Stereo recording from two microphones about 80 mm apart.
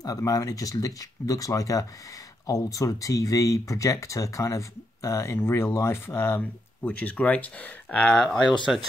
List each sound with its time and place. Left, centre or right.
0.0 s speech: left; by 8.5 s centre